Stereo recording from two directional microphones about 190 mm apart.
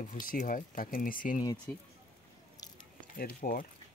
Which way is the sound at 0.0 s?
45° left (ahead or behind).